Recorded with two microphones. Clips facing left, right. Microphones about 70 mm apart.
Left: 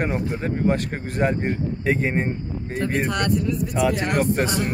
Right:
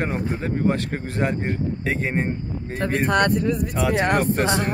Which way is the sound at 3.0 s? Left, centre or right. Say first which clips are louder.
Right 3 dB; right.